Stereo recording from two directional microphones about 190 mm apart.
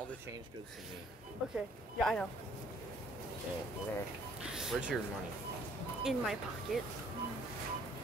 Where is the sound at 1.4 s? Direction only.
5° right (ahead or behind).